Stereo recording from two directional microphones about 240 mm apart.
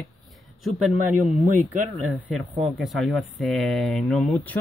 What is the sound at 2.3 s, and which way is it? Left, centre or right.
Speech, centre.